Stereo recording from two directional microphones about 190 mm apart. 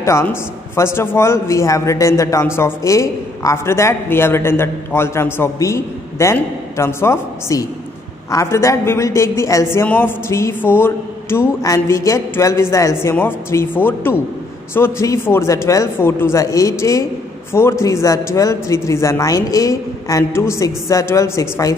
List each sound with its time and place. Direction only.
0.0 s a man's voice: 15° left (ahead or behind)